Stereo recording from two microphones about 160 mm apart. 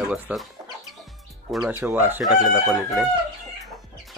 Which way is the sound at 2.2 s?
Centre (ahead or behind).